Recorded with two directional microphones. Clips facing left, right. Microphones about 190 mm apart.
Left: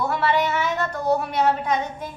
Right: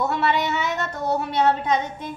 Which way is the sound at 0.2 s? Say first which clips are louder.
Left 1 dB; 20° right (ahead or behind).